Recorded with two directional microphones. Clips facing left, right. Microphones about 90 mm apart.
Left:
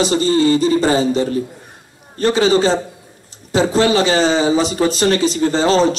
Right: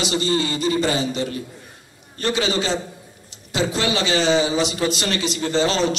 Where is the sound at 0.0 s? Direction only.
35° left (ahead or behind).